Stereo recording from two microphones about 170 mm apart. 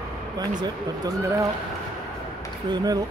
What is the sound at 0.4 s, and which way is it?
Speech, 20° right (ahead or behind).